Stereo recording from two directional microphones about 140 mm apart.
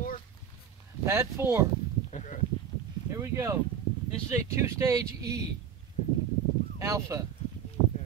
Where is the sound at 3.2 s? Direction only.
20° right (ahead or behind).